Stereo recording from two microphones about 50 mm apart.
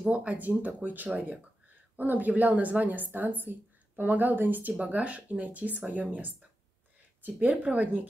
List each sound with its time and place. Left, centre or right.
0.1 s a woman's voice: right
4.7 s a woman's voice: right